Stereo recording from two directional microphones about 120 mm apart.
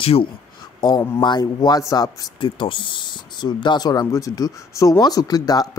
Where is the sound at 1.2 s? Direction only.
35° left (ahead or behind).